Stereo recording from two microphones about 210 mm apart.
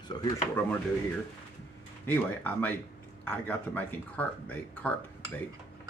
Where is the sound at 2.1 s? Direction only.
10° left (ahead or behind).